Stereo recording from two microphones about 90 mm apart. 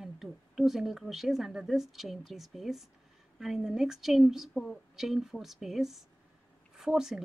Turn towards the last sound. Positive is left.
turn(degrees=-5)  # may be behind; listen again after turning